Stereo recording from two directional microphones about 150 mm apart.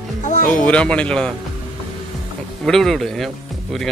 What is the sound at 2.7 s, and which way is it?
Speech, centre (ahead or behind).